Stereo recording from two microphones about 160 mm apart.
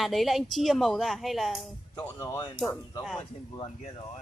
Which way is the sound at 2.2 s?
20° left (ahead or behind).